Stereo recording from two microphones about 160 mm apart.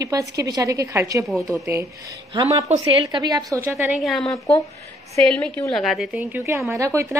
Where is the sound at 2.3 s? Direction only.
30° right (ahead or behind).